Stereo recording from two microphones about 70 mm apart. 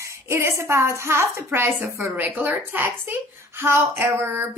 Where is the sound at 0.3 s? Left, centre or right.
Right.